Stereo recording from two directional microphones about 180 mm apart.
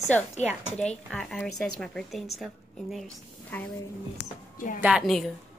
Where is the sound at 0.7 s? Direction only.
5° left (ahead or behind).